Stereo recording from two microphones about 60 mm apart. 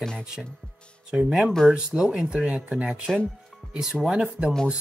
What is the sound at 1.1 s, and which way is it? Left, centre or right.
A man's voice, centre.